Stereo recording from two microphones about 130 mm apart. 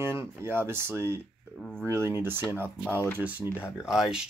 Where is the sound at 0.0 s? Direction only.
20° right (ahead or behind).